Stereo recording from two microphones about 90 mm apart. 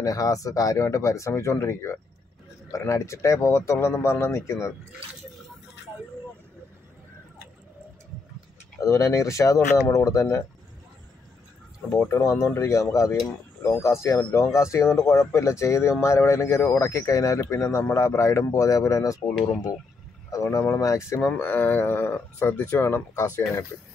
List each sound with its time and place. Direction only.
0.0 s speech: 40° left (ahead or behind)
8.8 s speech: 35° left (ahead or behind)
11.9 s speech: 30° left (ahead or behind)
19.2 s speech: 5° left (ahead or behind)
20.2 s speech: 35° left (ahead or behind)
21.4 s speech: 20° left (ahead or behind)